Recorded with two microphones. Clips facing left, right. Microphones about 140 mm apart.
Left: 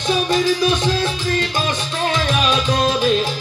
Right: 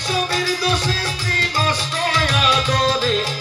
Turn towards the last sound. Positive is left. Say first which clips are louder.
# left 2 dB
turn(degrees=20)  # may be behind; listen again after turning